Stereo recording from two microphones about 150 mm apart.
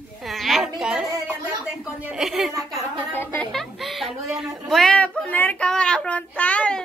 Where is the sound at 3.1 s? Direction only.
15° left (ahead or behind).